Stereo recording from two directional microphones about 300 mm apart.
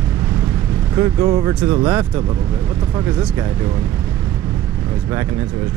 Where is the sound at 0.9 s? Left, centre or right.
Centre.